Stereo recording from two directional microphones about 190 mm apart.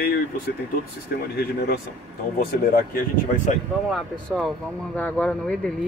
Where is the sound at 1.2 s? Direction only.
55° left (ahead or behind).